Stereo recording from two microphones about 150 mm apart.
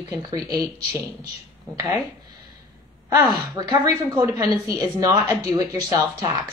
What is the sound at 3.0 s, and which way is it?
A woman's voice, 25° right (ahead or behind).